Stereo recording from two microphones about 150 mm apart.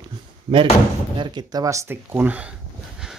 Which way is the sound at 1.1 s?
30° right (ahead or behind).